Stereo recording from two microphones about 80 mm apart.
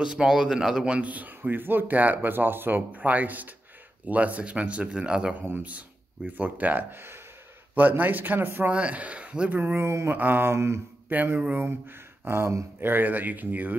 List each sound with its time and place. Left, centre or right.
0.0 s a man's voice: centre
9.6 s speech: right
10.1 s a man's voice: right
10.5 s speech: right
11.1 s a man's voice: right
12.3 s a man's voice: right